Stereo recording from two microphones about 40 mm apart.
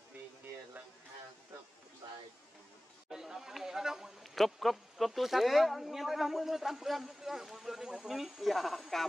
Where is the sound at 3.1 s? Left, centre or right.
Centre.